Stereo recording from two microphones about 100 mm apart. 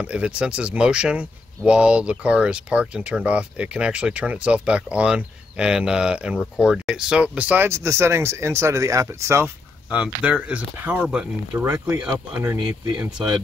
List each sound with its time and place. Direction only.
0.0 s speech: 10° right (ahead or behind)